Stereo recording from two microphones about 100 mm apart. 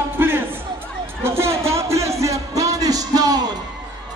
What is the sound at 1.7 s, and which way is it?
Music, 30° right (ahead or behind).